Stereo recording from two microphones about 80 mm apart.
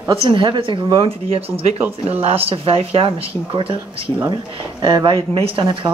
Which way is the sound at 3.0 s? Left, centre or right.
Right.